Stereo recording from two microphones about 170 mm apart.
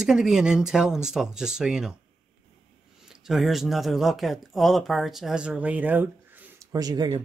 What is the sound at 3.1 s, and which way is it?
Speech, centre (ahead or behind).